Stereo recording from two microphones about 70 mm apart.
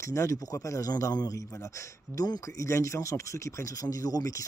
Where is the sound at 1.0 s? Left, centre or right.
Left.